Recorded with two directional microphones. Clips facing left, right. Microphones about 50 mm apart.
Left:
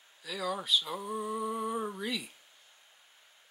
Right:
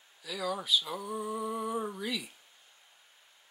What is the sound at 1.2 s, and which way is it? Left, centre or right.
Speech, centre.